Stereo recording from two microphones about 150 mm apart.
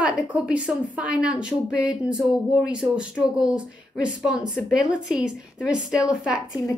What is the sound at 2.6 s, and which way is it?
A woman's voice, 5° right (ahead or behind).